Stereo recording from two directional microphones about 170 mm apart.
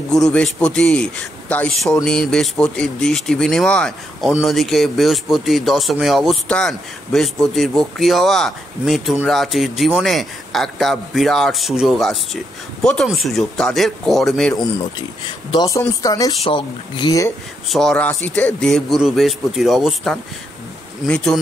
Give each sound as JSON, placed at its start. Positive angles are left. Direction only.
{"t": 0.1, "sound": "a man's voice", "side_deg": 5}
{"t": 15.2, "sound": "speech", "side_deg": 20}
{"t": 17.6, "sound": "speech", "side_deg": 0}